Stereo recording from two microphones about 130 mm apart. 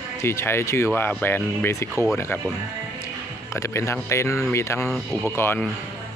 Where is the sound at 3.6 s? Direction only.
20° left (ahead or behind).